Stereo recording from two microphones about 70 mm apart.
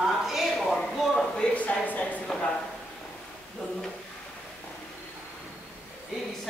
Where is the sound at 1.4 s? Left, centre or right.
Centre.